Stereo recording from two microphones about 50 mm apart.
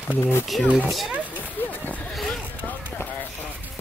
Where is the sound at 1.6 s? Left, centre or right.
Left.